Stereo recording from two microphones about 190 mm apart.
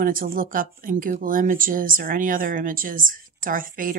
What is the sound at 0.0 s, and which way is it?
A woman's voice, 45° right (ahead or behind).